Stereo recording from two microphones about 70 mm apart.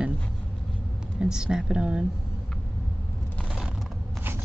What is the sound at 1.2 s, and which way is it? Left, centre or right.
Speech, centre.